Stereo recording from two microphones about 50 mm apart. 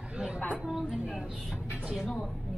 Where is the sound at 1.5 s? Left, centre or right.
Right.